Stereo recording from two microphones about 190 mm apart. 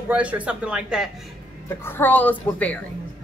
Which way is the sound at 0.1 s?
5° right (ahead or behind).